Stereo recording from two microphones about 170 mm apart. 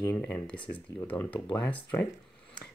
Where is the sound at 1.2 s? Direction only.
30° left (ahead or behind).